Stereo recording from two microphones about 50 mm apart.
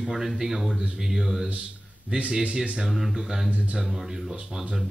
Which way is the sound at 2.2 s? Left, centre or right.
Centre.